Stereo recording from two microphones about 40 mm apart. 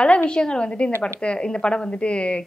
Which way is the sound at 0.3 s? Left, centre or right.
Left.